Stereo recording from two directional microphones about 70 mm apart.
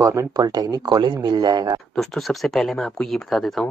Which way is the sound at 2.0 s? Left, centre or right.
Centre.